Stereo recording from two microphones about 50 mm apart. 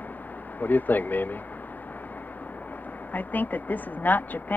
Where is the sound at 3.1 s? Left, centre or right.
Left.